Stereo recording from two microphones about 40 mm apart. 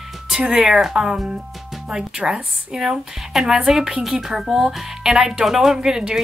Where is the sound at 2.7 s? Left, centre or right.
Centre.